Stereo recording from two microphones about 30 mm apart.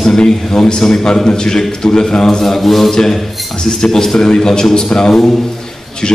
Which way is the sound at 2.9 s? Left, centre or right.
Left.